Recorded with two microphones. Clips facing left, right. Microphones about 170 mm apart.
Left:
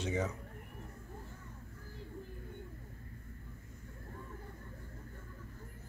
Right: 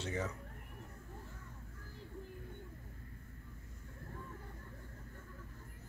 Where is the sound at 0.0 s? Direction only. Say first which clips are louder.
Left 4 dB; 15° left (ahead or behind).